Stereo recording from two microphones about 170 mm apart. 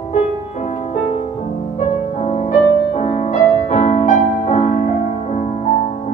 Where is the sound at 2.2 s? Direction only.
40° left (ahead or behind).